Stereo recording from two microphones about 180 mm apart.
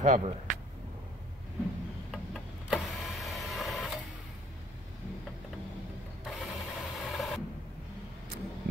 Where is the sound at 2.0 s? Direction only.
Centre (ahead or behind).